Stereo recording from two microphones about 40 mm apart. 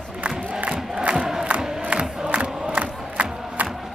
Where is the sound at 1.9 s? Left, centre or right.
Right.